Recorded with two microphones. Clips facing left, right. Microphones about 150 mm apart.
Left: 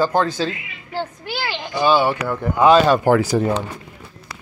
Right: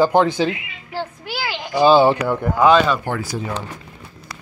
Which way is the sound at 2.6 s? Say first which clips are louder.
Left 2 dB; 30° left (ahead or behind).